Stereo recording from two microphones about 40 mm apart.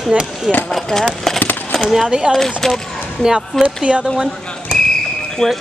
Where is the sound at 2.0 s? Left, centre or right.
Right.